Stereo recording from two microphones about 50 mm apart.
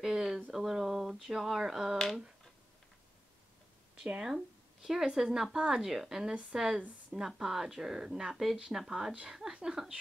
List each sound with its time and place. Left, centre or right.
0.0 s a sound: centre
0.5 s speech: centre
4.0 s a woman's voice: centre